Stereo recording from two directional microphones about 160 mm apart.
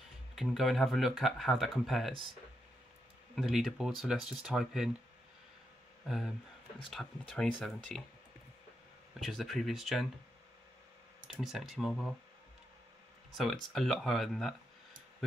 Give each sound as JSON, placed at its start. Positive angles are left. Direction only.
{"t": 0.4, "sound": "speech", "side_deg": 0}
{"t": 3.3, "sound": "speech", "side_deg": 0}
{"t": 6.0, "sound": "speech", "side_deg": 0}
{"t": 9.2, "sound": "speech", "side_deg": 0}
{"t": 11.3, "sound": "speech", "side_deg": 0}
{"t": 13.3, "sound": "speech", "side_deg": 0}